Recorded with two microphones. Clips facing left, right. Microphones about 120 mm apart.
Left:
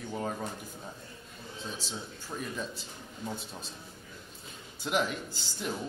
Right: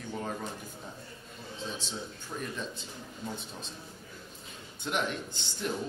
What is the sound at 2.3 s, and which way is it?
Speech, 5° left (ahead or behind).